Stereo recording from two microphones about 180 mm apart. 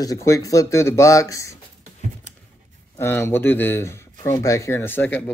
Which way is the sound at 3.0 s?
15° left (ahead or behind).